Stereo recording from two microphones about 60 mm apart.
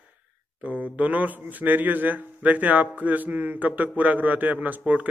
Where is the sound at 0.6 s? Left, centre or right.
Right.